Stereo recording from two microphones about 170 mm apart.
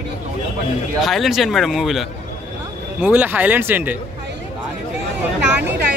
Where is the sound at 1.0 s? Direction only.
Centre (ahead or behind).